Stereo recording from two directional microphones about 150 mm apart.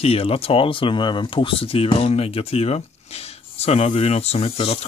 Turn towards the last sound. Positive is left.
turn(degrees=40)  # may be behind; listen again after turning